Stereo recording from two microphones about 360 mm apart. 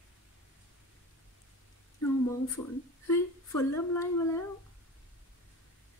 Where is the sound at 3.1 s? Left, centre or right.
Centre.